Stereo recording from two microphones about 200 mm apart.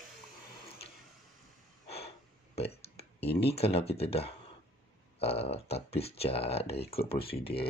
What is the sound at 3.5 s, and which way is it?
Speech, 30° left (ahead or behind).